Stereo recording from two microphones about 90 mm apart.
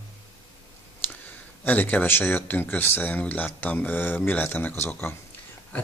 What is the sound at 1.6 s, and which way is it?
Speech, 20° left (ahead or behind).